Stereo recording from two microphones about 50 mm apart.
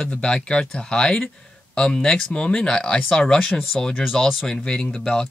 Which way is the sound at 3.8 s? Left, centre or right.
Centre.